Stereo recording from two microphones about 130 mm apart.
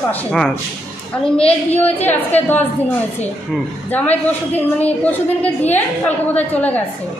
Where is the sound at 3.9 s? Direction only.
15° left (ahead or behind).